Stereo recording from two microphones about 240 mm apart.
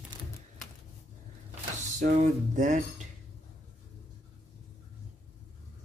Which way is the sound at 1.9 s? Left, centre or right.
Right.